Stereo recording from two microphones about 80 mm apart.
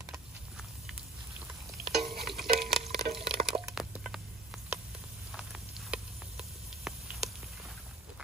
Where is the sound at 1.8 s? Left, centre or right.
Centre.